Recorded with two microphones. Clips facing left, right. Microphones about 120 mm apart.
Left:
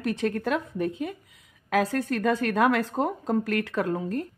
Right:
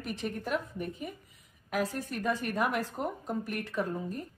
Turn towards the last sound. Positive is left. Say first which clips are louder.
# left 6 dB
turn(degrees=85)